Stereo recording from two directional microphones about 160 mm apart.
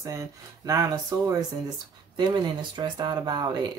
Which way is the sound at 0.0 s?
20° right (ahead or behind).